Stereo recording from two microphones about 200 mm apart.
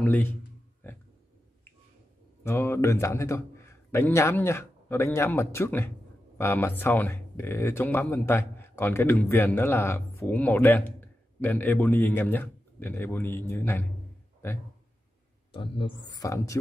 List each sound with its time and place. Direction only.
0.0 s a man's voice: 10° left (ahead or behind)
0.8 s a sound: 10° left (ahead or behind)
2.4 s speech: 10° left (ahead or behind)
15.5 s speech: 25° left (ahead or behind)